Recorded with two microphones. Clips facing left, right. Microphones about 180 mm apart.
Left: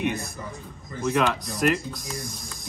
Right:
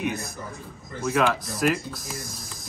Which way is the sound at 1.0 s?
5° right (ahead or behind).